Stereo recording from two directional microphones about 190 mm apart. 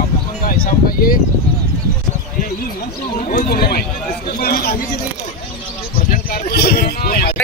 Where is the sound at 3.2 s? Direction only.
50° left (ahead or behind).